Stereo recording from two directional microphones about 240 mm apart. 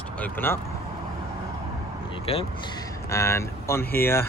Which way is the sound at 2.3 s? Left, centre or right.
Left.